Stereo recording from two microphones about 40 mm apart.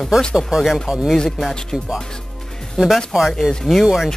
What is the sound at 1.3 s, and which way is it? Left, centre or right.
Speech, centre.